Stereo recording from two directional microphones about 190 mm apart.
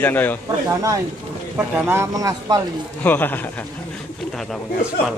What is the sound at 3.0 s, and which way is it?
Speech, 10° left (ahead or behind).